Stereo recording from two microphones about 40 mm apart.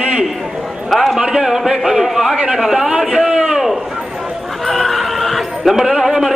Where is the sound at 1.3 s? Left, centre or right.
Centre.